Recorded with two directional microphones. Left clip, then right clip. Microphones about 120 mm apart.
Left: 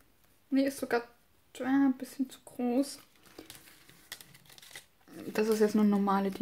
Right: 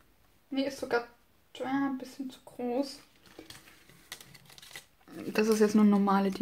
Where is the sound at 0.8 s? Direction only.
60° left (ahead or behind).